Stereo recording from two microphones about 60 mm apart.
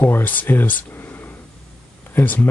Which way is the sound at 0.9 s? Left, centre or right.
Left.